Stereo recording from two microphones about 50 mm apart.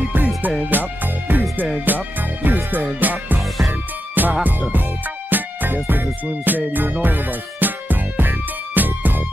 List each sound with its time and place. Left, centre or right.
0.7 s music: right
3.3 s music: centre
4.1 s music: right